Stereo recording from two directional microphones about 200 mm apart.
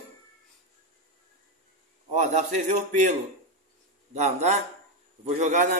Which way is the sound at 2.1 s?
35° right (ahead or behind).